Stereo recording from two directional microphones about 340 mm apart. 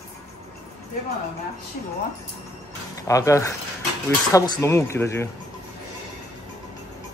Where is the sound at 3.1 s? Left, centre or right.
Centre.